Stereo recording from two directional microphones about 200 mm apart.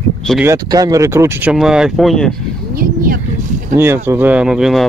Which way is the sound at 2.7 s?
45° right (ahead or behind).